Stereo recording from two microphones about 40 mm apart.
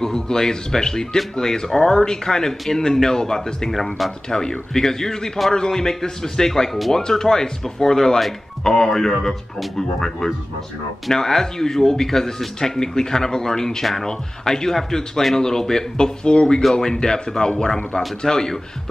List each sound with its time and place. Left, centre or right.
0.0 s speech: centre
4.3 s speech: centre
16.3 s speech: left